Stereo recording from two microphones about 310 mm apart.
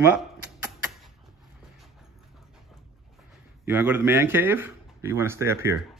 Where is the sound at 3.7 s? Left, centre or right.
Centre.